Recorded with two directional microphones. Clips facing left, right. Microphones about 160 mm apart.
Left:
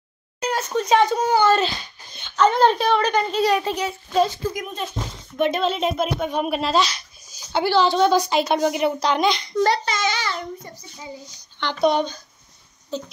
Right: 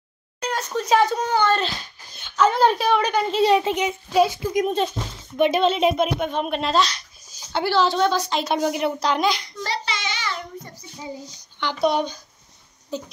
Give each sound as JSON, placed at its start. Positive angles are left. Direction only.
{"t": 0.4, "sound": "a child's voice", "side_deg": 5}
{"t": 1.2, "sound": "a child's voice", "side_deg": 5}
{"t": 3.3, "sound": "speech", "side_deg": -25}
{"t": 5.4, "sound": "a child's voice", "side_deg": 0}
{"t": 8.1, "sound": "a woman's voice", "side_deg": 10}
{"t": 9.6, "sound": "speech", "side_deg": 50}
{"t": 11.6, "sound": "speech", "side_deg": -5}